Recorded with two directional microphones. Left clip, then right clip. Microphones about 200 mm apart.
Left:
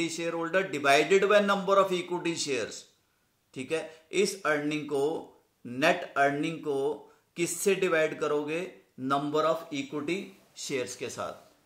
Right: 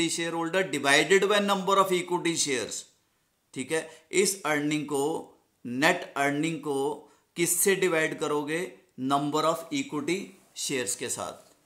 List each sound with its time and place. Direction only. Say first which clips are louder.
0.0 s speech: right 2 dB; 55° right (ahead or behind)